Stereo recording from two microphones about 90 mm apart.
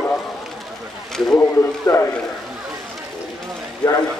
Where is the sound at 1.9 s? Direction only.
35° left (ahead or behind).